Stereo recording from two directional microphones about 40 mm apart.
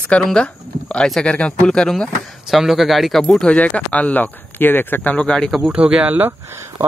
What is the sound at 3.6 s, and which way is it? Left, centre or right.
Speech, left.